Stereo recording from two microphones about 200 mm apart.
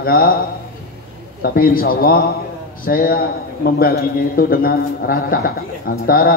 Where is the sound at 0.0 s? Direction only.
50° left (ahead or behind).